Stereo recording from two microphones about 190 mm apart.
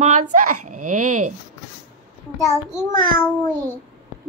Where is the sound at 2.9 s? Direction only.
45° right (ahead or behind).